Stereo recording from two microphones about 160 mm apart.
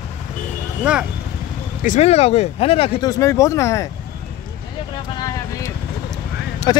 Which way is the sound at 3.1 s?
20° left (ahead or behind).